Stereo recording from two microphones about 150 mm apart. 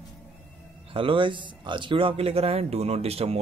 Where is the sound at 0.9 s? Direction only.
35° right (ahead or behind).